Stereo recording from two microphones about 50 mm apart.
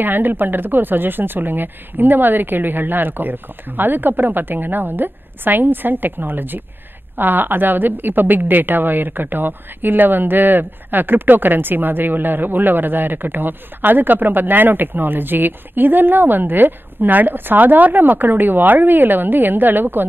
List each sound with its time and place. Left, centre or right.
0.0 s a woman's voice: right